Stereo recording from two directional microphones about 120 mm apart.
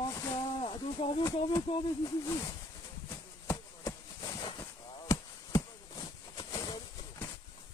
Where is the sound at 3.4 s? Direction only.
30° left (ahead or behind).